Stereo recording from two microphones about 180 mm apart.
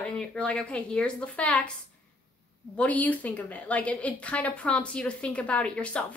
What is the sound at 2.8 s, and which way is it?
A woman's voice, 10° left (ahead or behind).